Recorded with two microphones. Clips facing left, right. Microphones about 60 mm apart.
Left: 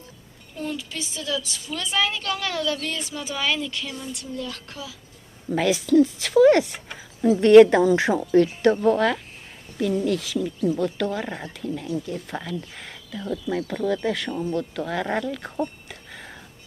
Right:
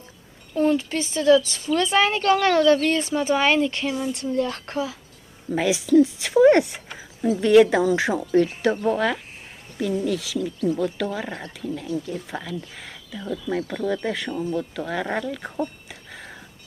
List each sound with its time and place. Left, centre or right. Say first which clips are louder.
0.6 s a woman's voice: right 10 dB; right
5.5 s speech: right 1 dB; centre
15.9 s a sound: even; centre